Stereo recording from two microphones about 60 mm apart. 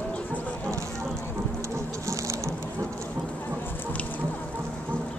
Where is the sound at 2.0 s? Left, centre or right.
Right.